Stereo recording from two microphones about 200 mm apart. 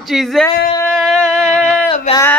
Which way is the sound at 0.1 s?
Centre (ahead or behind).